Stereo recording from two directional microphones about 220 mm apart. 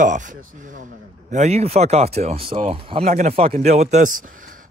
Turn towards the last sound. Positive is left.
turn(degrees=-35)  # may be behind; listen again after turning